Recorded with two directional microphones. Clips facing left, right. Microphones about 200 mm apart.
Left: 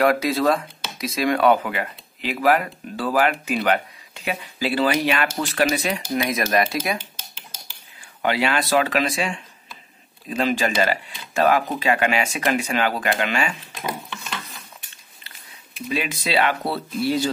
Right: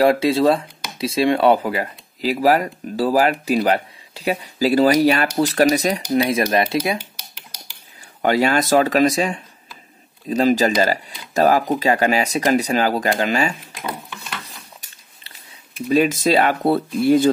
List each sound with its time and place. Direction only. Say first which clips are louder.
0.0 s speech: right 4 dB; 30° right (ahead or behind)
7.0 s typing: right 2 dB; 15° right (ahead or behind)
8.2 s speech: right 5 dB; 45° right (ahead or behind)
14.4 s a sound: even; 30° right (ahead or behind)
15.9 s speech: right 8 dB; 45° right (ahead or behind)